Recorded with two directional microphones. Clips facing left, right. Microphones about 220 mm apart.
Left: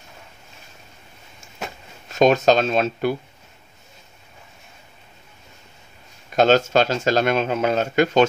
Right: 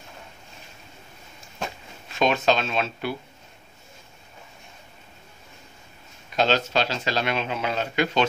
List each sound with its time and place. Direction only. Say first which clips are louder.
2.0 s speech: left 6 dB; 40° left (ahead or behind)
6.3 s speech: left 7 dB; 50° left (ahead or behind)